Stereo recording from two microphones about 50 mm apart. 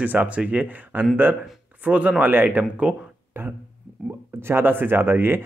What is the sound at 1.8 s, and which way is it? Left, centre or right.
Speech, right.